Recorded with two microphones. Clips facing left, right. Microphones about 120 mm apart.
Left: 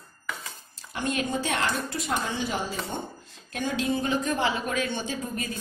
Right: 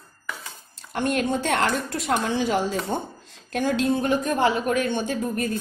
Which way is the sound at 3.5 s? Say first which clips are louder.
Right 5 dB; 65° right (ahead or behind).